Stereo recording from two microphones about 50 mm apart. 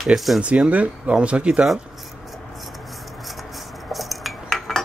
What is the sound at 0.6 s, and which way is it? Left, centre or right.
Speech, right.